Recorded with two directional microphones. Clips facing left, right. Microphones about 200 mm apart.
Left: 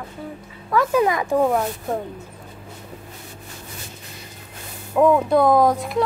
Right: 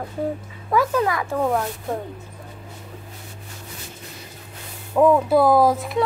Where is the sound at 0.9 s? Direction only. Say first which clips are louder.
Left 4 dB; 20° left (ahead or behind).